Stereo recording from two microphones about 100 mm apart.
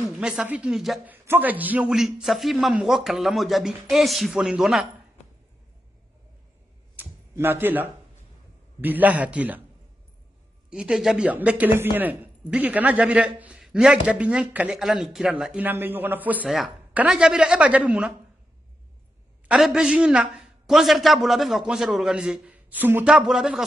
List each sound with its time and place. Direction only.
0.2 s a man's voice: 5° right (ahead or behind)
1.0 s a man's voice: 20° right (ahead or behind); by 4.8 s 5° right (ahead or behind)
7.0 s a sound: 20° right (ahead or behind)
8.8 s a man's voice: 15° right (ahead or behind)
10.7 s a man's voice: 5° right (ahead or behind)
11.2 s a man's voice: 15° right (ahead or behind)
14.8 s a man's voice: 5° right (ahead or behind)
15.6 s a man's voice: 20° right (ahead or behind)
16.4 s a man's voice: 5° right (ahead or behind)
19.4 s a man's voice: 5° right (ahead or behind)
23.0 s a man's voice: 5° right (ahead or behind)